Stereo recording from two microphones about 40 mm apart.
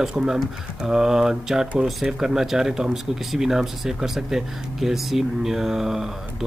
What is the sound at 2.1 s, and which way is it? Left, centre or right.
Speech, centre.